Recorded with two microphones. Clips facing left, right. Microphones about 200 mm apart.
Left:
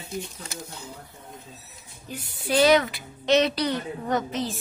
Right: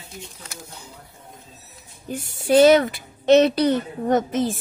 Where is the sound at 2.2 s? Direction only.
45° right (ahead or behind).